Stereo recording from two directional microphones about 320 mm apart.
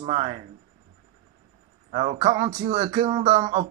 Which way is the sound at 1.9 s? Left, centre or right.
Centre.